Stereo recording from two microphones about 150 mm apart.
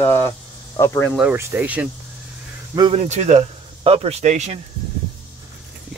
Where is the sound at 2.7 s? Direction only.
35° right (ahead or behind); by 4.5 s 50° right (ahead or behind).